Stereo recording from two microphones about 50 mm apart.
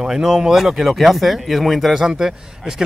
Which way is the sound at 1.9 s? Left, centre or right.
Centre.